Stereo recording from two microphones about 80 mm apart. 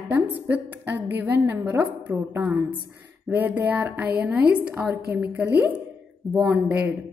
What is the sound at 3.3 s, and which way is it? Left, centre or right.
Speech, right.